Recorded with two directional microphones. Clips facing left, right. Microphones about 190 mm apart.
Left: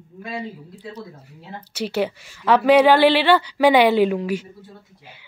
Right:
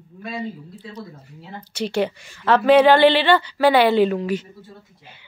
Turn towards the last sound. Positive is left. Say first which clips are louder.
# even
turn(degrees=10)  # may be behind; listen again after turning